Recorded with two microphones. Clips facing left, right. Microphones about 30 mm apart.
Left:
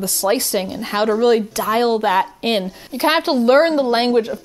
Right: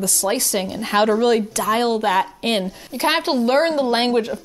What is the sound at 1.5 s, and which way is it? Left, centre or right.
Speech, left.